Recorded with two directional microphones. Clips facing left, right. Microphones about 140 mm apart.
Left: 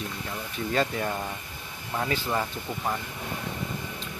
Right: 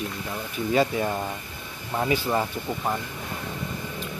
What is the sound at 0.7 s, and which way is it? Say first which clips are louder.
Speech: right 4 dB; 10° right (ahead or behind).